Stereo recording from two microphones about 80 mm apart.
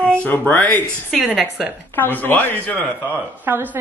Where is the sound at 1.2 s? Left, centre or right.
Centre.